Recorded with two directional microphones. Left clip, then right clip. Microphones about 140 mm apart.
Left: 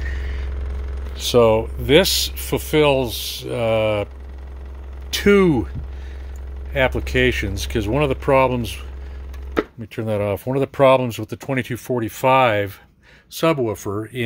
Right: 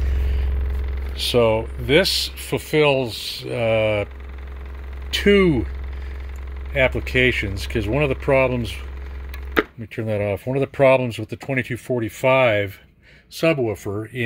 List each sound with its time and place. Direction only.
1.2 s speech: 15° left (ahead or behind)
2.5 s speech: 10° left (ahead or behind)
5.1 s speech: 5° left (ahead or behind)
6.7 s speech: 5° left (ahead or behind)
9.8 s speech: centre (ahead or behind)